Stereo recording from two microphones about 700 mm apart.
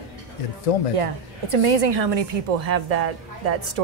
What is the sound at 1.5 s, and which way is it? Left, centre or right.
A woman's voice, right.